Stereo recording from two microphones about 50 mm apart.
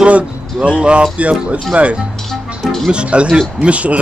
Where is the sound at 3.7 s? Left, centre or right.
Right.